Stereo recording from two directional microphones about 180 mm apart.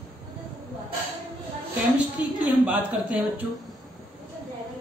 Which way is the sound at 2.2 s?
5° right (ahead or behind).